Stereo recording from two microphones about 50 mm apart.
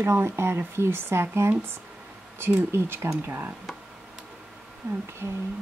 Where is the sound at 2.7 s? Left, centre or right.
Right.